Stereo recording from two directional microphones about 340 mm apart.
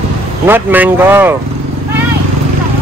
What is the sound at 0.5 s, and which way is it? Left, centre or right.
Speech, centre.